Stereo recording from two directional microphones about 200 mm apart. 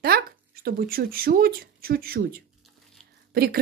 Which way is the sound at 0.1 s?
50° right (ahead or behind).